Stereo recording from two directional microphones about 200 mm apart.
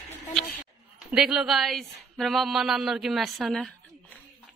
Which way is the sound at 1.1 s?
Centre (ahead or behind).